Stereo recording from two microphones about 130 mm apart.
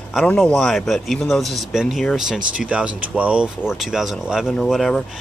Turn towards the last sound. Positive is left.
turn(degrees=0)  # may be behind; listen again after turning